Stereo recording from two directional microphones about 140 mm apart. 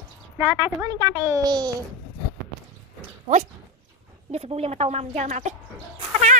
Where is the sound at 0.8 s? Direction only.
25° right (ahead or behind).